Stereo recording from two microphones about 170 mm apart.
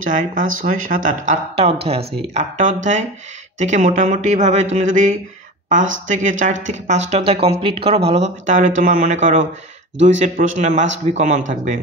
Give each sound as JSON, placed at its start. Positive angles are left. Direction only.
{"t": 0.0, "sound": "speech", "side_deg": -50}